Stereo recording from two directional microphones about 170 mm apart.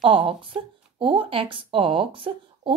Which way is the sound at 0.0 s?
30° right (ahead or behind).